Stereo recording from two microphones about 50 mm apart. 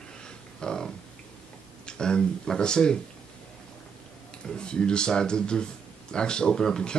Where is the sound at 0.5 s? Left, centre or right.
Centre.